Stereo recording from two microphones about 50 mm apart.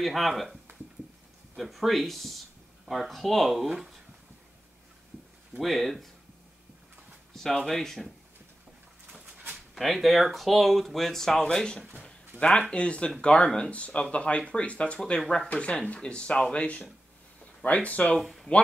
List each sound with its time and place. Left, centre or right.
0.0 s speech: centre
1.6 s speech: centre
5.6 s speech: centre
7.3 s speech: centre
9.8 s speech: centre
11.4 s speech: centre
18.2 s speech: centre